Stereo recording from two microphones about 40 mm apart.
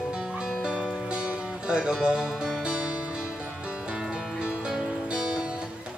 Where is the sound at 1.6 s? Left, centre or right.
Centre.